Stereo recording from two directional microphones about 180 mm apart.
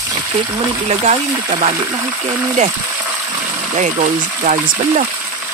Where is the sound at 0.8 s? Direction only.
40° right (ahead or behind).